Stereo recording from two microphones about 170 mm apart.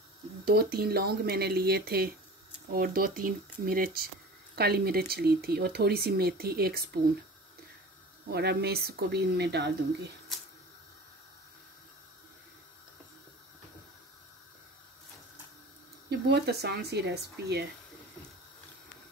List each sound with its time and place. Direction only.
0.5 s speech: 65° right (ahead or behind)
8.3 s speech: 70° right (ahead or behind)
16.1 s speech: 75° right (ahead or behind)